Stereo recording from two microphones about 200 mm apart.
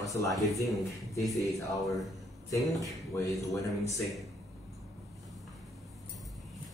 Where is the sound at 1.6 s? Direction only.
15° left (ahead or behind).